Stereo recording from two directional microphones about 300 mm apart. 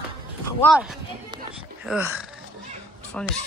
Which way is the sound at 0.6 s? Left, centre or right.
Centre.